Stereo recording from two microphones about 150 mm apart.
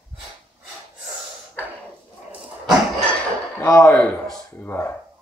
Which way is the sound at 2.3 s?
5° right (ahead or behind).